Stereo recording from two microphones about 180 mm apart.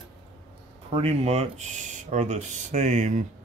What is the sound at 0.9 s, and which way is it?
Speech, 35° right (ahead or behind).